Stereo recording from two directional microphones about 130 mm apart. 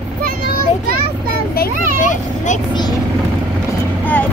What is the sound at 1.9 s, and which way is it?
Vehicle, 70° left (ahead or behind).